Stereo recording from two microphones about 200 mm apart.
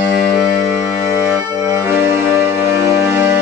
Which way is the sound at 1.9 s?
10° right (ahead or behind).